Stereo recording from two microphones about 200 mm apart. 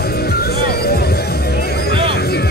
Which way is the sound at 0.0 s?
50° left (ahead or behind).